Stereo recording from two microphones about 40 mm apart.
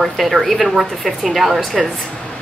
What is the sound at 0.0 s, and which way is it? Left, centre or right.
A woman's voice, centre.